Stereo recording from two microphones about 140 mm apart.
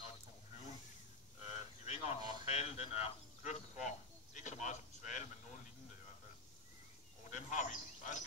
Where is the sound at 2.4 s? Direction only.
50° left (ahead or behind).